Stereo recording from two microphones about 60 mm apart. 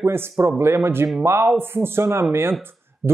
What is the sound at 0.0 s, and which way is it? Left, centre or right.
Speech, right.